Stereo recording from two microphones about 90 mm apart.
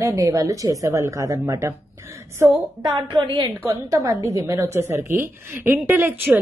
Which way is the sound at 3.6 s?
35° right (ahead or behind).